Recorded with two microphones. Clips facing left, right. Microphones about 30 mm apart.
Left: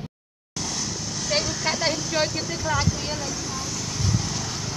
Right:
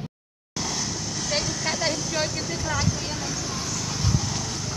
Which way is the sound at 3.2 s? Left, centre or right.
Centre.